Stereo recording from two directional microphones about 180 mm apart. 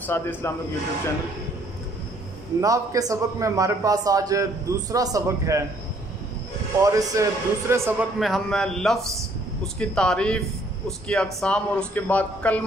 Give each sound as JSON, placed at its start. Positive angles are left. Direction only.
{"t": 0.0, "sound": "speech", "side_deg": 10}
{"t": 2.6, "sound": "a man's voice", "side_deg": -20}
{"t": 6.8, "sound": "a man's voice", "side_deg": -20}
{"t": 8.2, "sound": "a man's voice", "side_deg": 0}